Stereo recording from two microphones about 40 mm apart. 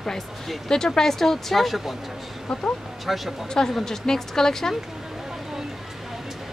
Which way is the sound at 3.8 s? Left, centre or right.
Centre.